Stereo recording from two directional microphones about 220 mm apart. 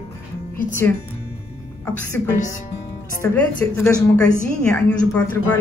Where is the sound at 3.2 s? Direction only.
10° left (ahead or behind).